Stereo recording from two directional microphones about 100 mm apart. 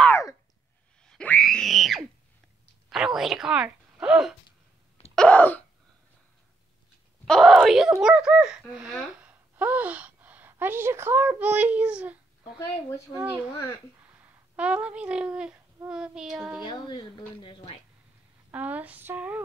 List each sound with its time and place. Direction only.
1.0 s boing: 10° left (ahead or behind)
1.4 s a sound: 5° left (ahead or behind)
2.9 s speech: 5° right (ahead or behind)
5.1 s a sound: 10° left (ahead or behind)
7.2 s wail: 5° left (ahead or behind)
8.0 s speech: 10° right (ahead or behind)
14.6 s speech: 10° right (ahead or behind)
15.9 s child singing: 5° right (ahead or behind)
16.6 s speech: 45° left (ahead or behind)
17.4 s speech: 60° left (ahead or behind)
18.5 s speech: 15° right (ahead or behind)